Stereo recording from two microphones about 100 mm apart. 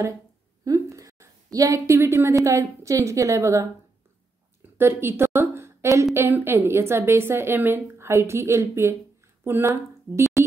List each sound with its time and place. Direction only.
0.9 s a sound: 35° right (ahead or behind)
2.4 s a woman's voice: 30° right (ahead or behind)
4.7 s a woman's voice: 25° right (ahead or behind)